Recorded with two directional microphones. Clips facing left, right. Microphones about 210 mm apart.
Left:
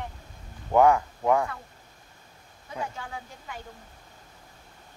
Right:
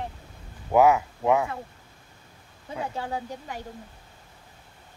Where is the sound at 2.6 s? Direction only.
35° right (ahead or behind).